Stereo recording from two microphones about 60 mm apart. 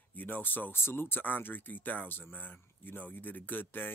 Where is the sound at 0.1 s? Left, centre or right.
Left.